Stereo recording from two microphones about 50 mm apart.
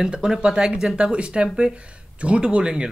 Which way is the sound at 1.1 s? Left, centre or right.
Right.